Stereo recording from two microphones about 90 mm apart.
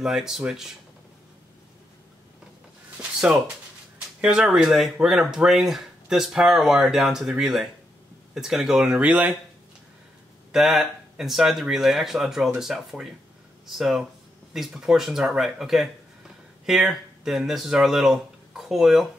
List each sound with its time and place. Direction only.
0.0 s speech: 5° right (ahead or behind)
4.2 s speech: 5° right (ahead or behind)
10.5 s speech: centre (ahead or behind)